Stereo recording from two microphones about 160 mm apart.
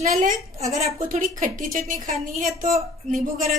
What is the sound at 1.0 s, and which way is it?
A woman's voice, 55° right (ahead or behind).